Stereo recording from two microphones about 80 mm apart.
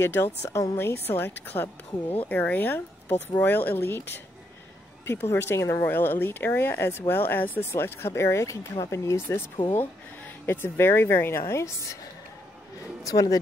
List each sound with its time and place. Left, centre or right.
0.0 s a woman's voice: left
9.8 s speech: left
13.0 s speech: left